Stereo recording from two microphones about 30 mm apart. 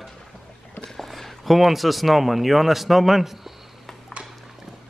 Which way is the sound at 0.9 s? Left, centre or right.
Centre.